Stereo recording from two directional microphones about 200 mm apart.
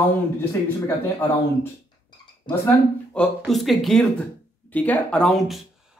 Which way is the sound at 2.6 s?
5° left (ahead or behind).